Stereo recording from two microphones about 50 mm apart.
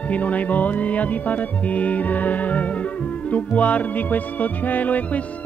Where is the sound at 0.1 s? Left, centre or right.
Left.